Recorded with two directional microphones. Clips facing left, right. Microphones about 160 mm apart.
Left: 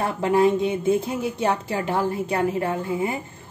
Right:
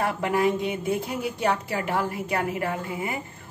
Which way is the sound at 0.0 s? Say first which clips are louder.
Left 4 dB; 25° left (ahead or behind).